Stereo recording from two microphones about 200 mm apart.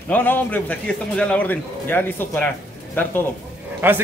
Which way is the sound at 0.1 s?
10° left (ahead or behind).